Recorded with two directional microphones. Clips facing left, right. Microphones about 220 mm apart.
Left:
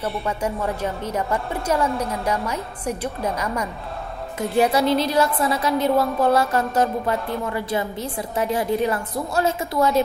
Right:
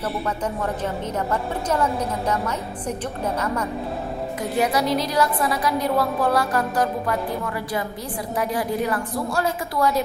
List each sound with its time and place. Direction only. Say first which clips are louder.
1.1 s a woman's voice: even; 10° left (ahead or behind)
4.4 s a woman's voice: left 4 dB; 25° left (ahead or behind)